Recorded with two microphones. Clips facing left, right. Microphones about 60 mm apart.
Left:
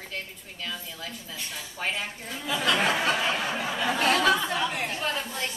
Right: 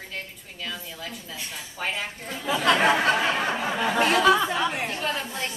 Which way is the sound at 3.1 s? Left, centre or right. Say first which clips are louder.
Right 3 dB; right.